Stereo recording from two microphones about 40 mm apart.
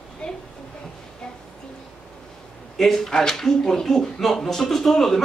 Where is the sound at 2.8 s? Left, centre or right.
Centre.